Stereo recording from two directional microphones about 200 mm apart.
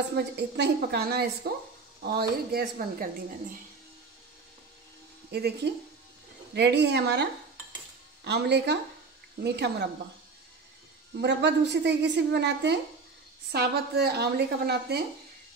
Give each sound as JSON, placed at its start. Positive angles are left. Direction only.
{"t": 0.1, "sound": "speech", "side_deg": -55}
{"t": 5.3, "sound": "a woman's voice", "side_deg": -55}
{"t": 11.1, "sound": "a woman's voice", "side_deg": -60}